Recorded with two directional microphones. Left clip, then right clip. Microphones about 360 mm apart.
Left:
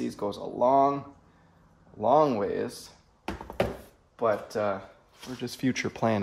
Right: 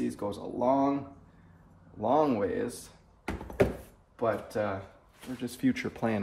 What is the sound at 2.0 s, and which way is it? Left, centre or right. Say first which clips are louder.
Speech: left 4 dB; left.